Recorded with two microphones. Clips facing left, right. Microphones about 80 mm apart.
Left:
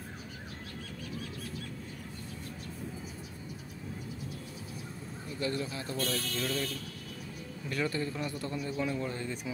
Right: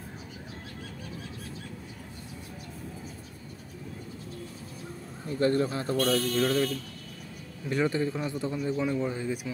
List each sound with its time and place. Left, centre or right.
5.4 s speech: right
5.9 s speech: right
6.3 s speech: right
7.7 s a man's voice: right